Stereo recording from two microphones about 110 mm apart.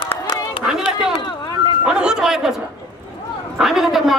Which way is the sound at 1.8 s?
10° right (ahead or behind).